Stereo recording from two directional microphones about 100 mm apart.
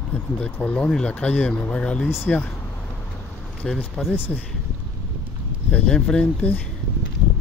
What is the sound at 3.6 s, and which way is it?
Speech, 5° left (ahead or behind).